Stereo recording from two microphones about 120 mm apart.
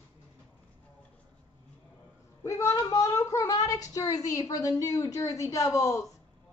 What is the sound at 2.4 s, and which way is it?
A woman's voice, 25° left (ahead or behind).